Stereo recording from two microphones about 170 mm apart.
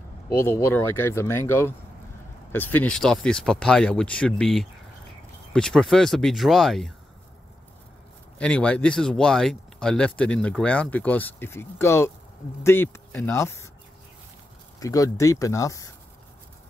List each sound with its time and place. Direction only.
0.3 s speech: 15° left (ahead or behind)
8.4 s speech: 5° left (ahead or behind)
14.8 s speech: 20° left (ahead or behind)